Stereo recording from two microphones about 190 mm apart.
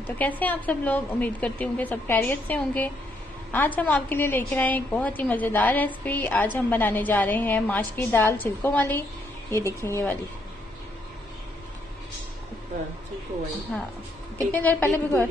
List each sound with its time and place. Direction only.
0.0 s a woman's voice: 10° left (ahead or behind)
14.5 s a woman's voice: 10° left (ahead or behind)